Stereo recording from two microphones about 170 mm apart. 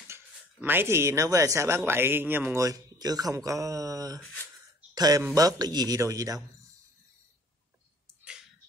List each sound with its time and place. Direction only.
0.1 s a man's voice: 10° right (ahead or behind)
4.2 s speech: 10° left (ahead or behind)
4.9 s a man's voice: 20° right (ahead or behind)